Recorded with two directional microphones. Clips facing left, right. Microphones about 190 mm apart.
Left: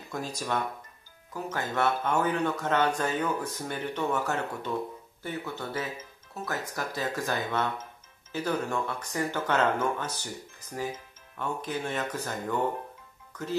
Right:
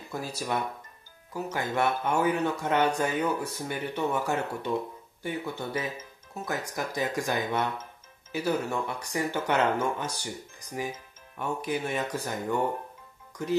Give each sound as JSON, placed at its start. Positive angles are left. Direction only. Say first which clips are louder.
{"t": 0.1, "sound": "speech", "louder": "even", "side_deg": -5}
{"t": 11.3, "sound": "speech", "louder": "right 2 dB", "side_deg": -10}